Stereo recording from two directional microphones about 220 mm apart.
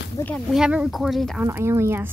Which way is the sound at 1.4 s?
10° right (ahead or behind).